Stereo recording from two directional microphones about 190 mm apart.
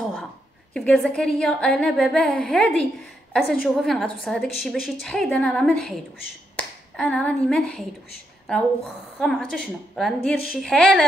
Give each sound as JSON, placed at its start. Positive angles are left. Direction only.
{"t": 0.7, "sound": "a woman's voice", "side_deg": 0}